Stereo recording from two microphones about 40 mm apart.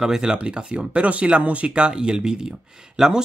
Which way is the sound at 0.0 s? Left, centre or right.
Centre.